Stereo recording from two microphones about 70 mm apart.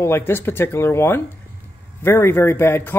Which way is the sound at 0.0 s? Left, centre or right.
Left.